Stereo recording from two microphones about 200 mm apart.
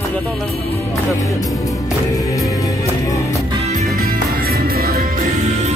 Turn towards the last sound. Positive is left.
turn(degrees=-50)  # may be behind; listen again after turning